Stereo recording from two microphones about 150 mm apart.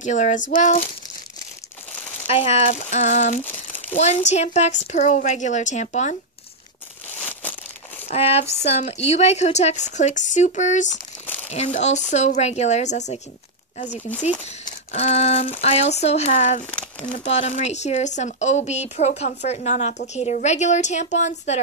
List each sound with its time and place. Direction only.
0.0 s a sound: 55° left (ahead or behind)
0.6 s speech: 55° left (ahead or behind)
2.2 s speech: 40° left (ahead or behind)
8.1 s speech: 45° left (ahead or behind)
14.9 s speech: 45° left (ahead or behind)